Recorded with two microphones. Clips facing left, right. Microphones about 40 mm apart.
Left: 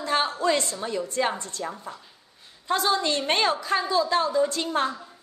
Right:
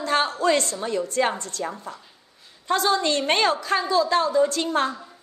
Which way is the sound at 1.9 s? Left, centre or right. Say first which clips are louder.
Right 2 dB; right.